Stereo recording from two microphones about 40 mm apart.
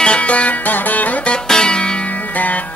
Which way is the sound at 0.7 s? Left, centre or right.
Left.